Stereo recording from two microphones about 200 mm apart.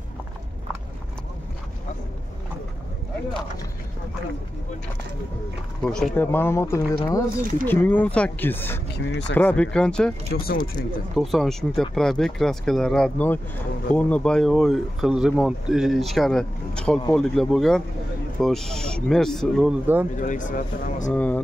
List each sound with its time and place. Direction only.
5.9 s speech: 5° left (ahead or behind)
8.9 s speech: 60° left (ahead or behind)
9.3 s speech: 10° left (ahead or behind)
10.3 s speech: 50° left (ahead or behind)
11.1 s speech: centre (ahead or behind)
20.2 s speech: 40° left (ahead or behind)
21.1 s speech: 5° left (ahead or behind)